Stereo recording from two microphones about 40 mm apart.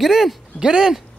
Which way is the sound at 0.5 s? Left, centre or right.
Centre.